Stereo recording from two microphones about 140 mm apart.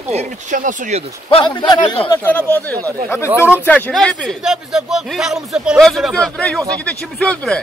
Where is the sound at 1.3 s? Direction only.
35° left (ahead or behind).